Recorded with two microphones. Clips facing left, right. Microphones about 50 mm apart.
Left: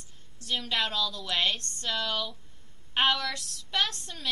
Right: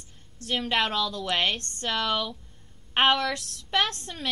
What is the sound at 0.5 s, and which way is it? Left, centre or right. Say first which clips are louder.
A woman's voice: right 4 dB; right.